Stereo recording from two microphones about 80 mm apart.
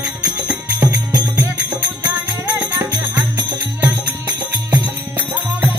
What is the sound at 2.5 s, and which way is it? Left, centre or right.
Music, right.